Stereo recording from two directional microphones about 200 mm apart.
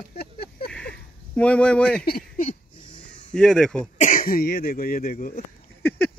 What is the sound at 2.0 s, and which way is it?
Speech, 45° left (ahead or behind).